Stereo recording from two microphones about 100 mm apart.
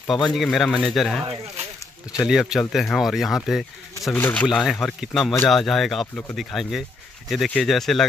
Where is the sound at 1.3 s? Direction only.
90° right.